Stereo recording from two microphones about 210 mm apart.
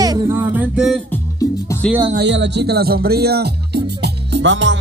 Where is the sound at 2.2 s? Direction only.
55° right (ahead or behind).